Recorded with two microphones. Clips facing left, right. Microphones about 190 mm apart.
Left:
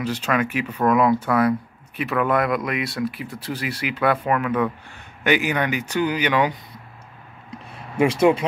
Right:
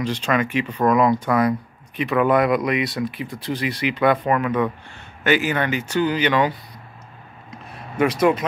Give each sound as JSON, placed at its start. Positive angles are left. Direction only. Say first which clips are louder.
{"t": 0.0, "sound": "speech", "louder": "right 1 dB", "side_deg": 5}
{"t": 4.9, "sound": "speech", "louder": "right 1 dB", "side_deg": 15}
{"t": 7.5, "sound": "a sound", "louder": "left 1 dB", "side_deg": 30}